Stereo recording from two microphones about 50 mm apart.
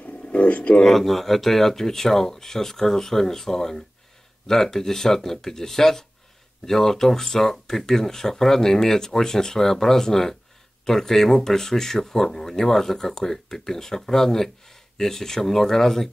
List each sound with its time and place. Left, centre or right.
0.0 s pigeon: left
0.7 s speech: centre